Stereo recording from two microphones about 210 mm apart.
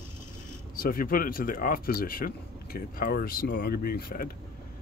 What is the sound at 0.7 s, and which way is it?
Speech, 45° left (ahead or behind).